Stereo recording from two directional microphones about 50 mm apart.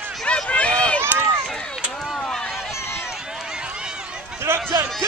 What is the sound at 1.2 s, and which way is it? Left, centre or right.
Run, centre.